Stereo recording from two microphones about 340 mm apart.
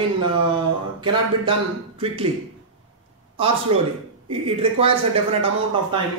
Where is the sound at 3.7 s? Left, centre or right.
Centre.